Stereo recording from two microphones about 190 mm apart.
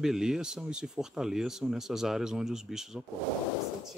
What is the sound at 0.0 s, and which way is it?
Speech, 5° right (ahead or behind).